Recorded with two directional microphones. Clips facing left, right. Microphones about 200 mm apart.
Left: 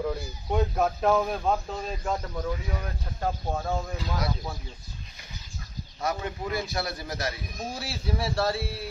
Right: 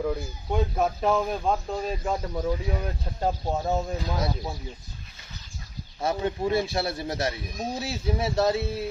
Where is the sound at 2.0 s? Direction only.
10° right (ahead or behind).